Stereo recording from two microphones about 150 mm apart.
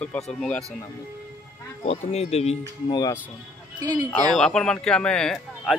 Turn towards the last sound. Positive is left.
turn(degrees=0)  # may be behind; listen again after turning